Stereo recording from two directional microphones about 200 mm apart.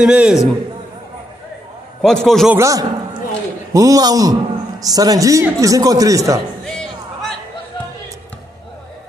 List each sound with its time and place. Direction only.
0.0 s a man's voice: 5° right (ahead or behind)
2.0 s a man's voice: 5° left (ahead or behind)
2.5 s a man's voice: 15° right (ahead or behind)
6.6 s a sound: centre (ahead or behind)